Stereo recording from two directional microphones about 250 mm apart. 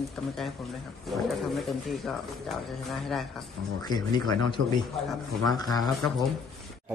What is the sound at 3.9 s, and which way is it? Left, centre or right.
Speech, centre.